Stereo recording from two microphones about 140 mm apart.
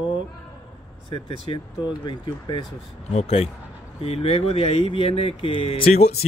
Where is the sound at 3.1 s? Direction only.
45° left (ahead or behind).